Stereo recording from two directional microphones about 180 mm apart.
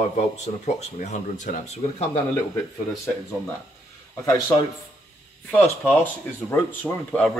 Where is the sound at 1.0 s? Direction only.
40° left (ahead or behind).